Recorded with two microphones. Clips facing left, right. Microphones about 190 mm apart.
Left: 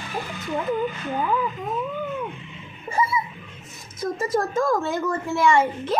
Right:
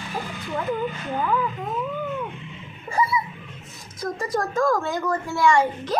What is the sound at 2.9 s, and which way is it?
Hiccup, 25° left (ahead or behind).